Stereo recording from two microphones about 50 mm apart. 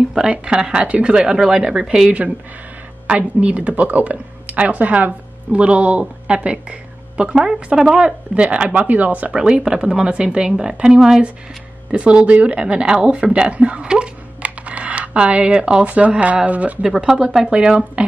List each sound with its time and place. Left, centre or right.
0.1 s speech: centre
0.8 s speech: right
1.1 s speech: centre
3.2 s speech: right; by 8.1 s centre
8.4 s speech: right
9.3 s speech: centre
16.8 s speech: centre
17.5 s speech: right